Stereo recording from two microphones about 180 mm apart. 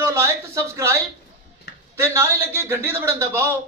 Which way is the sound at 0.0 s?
15° right (ahead or behind).